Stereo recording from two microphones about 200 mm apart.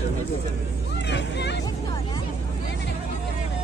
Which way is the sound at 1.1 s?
60° left (ahead or behind).